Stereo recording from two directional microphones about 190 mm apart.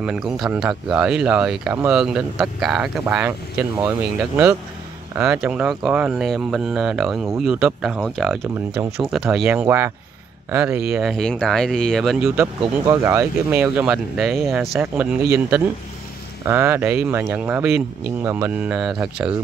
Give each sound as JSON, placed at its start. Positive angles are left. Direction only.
{"t": 0.0, "sound": "speech", "side_deg": -5}
{"t": 5.1, "sound": "speech", "side_deg": -5}
{"t": 10.9, "sound": "speech", "side_deg": 0}
{"t": 12.4, "sound": "speech", "side_deg": -15}
{"t": 16.4, "sound": "speech", "side_deg": -10}